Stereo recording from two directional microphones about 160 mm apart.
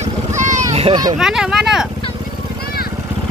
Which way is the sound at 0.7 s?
40° right (ahead or behind).